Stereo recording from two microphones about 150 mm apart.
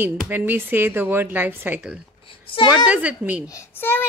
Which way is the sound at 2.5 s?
30° left (ahead or behind).